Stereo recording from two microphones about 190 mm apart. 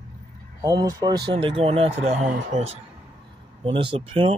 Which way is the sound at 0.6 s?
20° right (ahead or behind).